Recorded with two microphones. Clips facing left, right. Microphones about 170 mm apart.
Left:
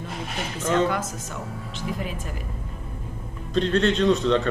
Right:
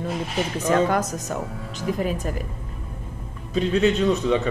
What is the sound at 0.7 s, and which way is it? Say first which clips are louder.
Speech: right 2 dB; 45° right (ahead or behind).